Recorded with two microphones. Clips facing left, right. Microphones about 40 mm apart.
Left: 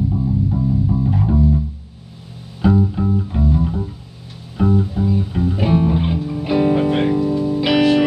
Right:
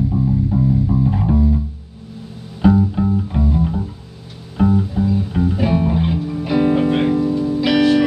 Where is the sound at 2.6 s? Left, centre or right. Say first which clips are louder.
Right 2 dB; centre.